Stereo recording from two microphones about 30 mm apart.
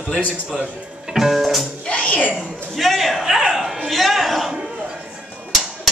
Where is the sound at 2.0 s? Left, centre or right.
Left.